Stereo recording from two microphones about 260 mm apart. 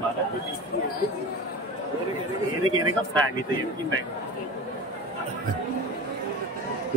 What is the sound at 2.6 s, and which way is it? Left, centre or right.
Speech, right.